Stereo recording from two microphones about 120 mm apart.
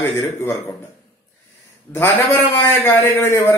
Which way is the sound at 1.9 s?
20° left (ahead or behind).